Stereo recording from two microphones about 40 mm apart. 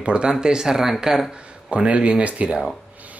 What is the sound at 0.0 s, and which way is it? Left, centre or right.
Speech, right.